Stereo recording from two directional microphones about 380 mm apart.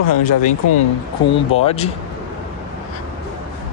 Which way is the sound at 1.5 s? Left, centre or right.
Centre.